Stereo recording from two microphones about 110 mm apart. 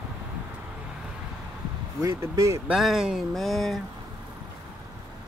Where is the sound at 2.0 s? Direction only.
25° right (ahead or behind).